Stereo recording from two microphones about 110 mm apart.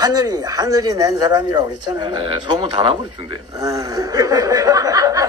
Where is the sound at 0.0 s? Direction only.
35° right (ahead or behind).